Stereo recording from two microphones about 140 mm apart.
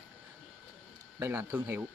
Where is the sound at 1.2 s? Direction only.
15° right (ahead or behind).